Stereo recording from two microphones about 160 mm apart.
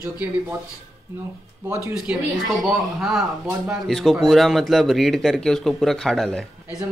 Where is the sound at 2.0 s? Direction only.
5° right (ahead or behind).